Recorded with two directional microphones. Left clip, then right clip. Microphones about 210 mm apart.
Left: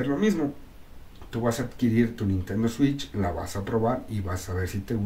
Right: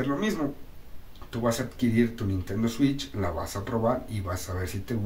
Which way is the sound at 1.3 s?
5° left (ahead or behind).